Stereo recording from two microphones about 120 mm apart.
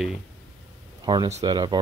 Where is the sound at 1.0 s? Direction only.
35° right (ahead or behind).